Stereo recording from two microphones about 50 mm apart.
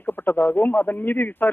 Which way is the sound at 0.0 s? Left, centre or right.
Left.